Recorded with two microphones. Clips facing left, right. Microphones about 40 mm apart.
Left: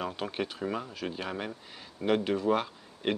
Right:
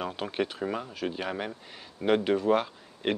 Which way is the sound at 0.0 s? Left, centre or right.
Centre.